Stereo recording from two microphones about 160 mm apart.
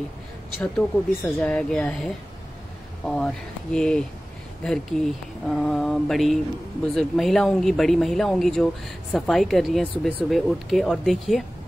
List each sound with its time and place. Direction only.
0.6 s speech: 10° left (ahead or behind)